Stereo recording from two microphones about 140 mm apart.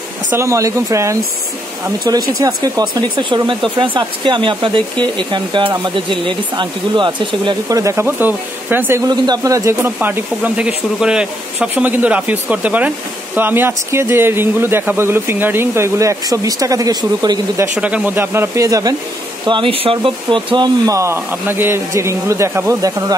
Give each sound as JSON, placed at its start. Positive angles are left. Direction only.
{"t": 0.3, "sound": "speech", "side_deg": -20}
{"t": 9.0, "sound": "speech", "side_deg": -30}
{"t": 17.7, "sound": "speech", "side_deg": -10}
{"t": 19.4, "sound": "speech", "side_deg": -35}